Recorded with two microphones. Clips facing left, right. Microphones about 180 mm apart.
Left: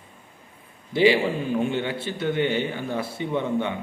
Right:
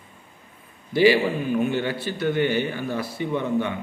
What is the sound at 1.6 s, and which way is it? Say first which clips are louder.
A man's voice: right 1 dB; 20° left (ahead or behind).